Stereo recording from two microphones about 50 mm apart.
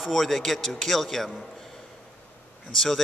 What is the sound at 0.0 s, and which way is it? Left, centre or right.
Speech, centre.